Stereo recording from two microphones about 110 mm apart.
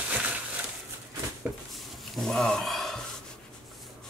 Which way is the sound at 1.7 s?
Centre (ahead or behind).